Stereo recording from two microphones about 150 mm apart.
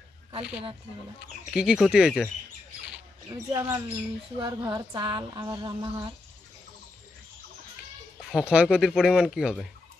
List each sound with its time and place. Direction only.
1.5 s speech: 5° right (ahead or behind)
3.3 s speech: 25° right (ahead or behind)
8.2 s speech: 5° right (ahead or behind)